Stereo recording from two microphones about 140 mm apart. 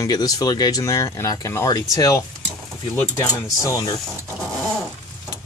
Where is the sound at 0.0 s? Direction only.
25° left (ahead or behind).